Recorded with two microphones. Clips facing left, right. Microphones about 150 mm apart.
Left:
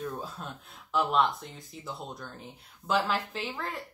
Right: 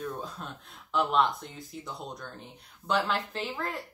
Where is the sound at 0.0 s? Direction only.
5° left (ahead or behind).